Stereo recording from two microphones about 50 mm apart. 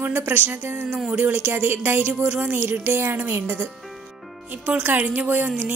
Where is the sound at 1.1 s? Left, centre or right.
Right.